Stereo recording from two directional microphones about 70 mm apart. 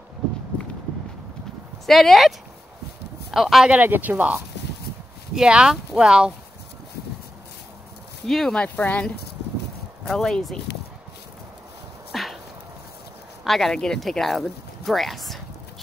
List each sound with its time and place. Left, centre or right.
1.9 s speech: centre
3.7 s speech: right
5.3 s speech: centre
8.3 s speech: centre
8.5 s speech: left
10.0 s speech: centre
12.1 s dog: centre
13.4 s speech: centre